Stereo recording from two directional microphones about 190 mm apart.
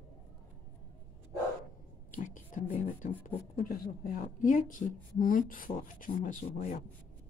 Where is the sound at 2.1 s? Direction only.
45° left (ahead or behind).